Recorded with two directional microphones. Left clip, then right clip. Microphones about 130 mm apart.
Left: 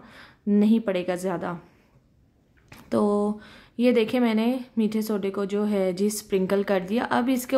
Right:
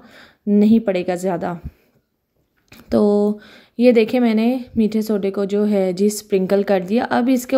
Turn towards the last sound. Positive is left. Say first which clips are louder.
# right 6 dB
turn(degrees=-25)  # may be behind; listen again after turning